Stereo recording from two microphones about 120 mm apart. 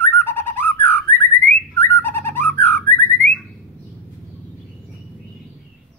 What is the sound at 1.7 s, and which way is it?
Bird, 15° left (ahead or behind).